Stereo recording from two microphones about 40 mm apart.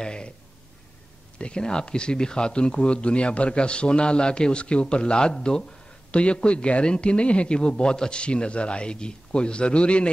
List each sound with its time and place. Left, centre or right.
0.0 s speech: left
1.4 s speech: left